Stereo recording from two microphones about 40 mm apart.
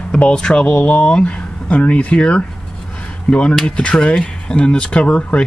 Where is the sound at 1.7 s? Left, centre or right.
Left.